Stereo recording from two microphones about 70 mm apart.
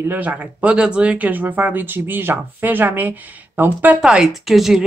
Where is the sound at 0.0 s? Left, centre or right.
Right.